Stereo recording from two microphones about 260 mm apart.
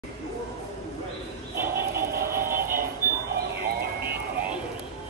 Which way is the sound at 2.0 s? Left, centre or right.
Right.